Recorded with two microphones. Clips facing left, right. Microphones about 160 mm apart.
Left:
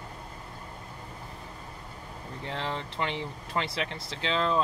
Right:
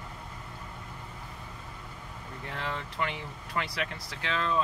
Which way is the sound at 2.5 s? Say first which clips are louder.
Left 2 dB; 25° left (ahead or behind).